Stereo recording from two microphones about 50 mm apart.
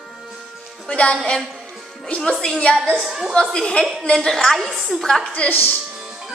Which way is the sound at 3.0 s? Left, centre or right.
Centre.